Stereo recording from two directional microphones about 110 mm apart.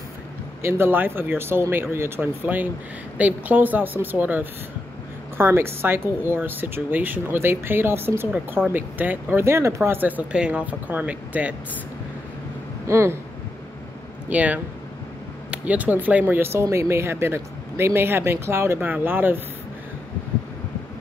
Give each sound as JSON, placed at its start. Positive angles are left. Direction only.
{"t": 0.6, "sound": "speech", "side_deg": -20}
{"t": 12.8, "sound": "speech", "side_deg": -25}
{"t": 14.3, "sound": "speech", "side_deg": -15}